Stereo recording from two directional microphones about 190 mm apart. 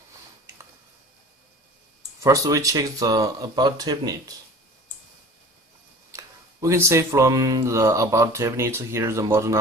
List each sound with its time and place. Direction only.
2.2 s speech: 15° right (ahead or behind)
6.1 s mantra: 15° right (ahead or behind)